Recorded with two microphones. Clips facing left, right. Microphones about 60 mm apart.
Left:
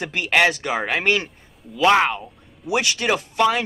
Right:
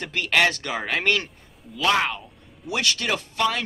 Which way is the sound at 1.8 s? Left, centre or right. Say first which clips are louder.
Left 6 dB; left.